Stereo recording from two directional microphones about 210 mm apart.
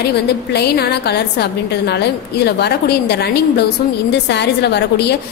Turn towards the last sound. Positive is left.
turn(degrees=50)  # may be behind; listen again after turning